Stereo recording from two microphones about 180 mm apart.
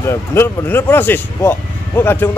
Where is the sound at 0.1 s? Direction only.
15° left (ahead or behind).